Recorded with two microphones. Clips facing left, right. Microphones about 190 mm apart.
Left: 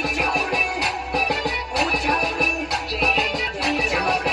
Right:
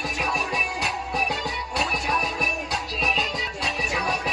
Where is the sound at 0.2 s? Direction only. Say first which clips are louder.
Left 3 dB; 70° left (ahead or behind).